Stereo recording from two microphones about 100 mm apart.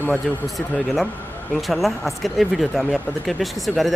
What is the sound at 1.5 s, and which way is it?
Speech, centre (ahead or behind).